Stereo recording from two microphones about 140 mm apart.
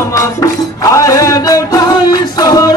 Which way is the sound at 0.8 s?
20° left (ahead or behind).